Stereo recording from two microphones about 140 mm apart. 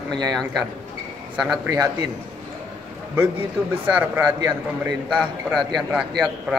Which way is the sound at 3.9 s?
15° right (ahead or behind).